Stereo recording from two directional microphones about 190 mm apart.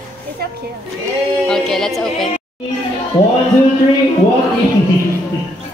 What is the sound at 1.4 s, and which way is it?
Speech, centre (ahead or behind).